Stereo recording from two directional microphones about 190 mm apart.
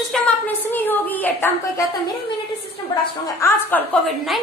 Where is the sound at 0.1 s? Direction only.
Centre (ahead or behind).